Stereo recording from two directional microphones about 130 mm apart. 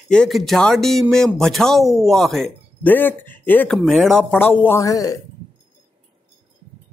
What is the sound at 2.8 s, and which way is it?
Speech, 15° left (ahead or behind).